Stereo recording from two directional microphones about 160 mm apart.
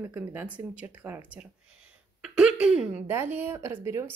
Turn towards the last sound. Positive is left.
turn(degrees=-15)  # may be behind; listen again after turning